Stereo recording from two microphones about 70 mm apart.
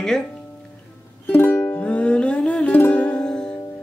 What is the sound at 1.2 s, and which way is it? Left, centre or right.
Music, left.